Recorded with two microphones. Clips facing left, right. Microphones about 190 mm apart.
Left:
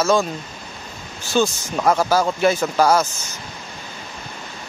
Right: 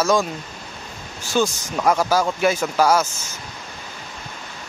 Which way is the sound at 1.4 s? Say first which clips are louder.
Left 1 dB; 5° left (ahead or behind).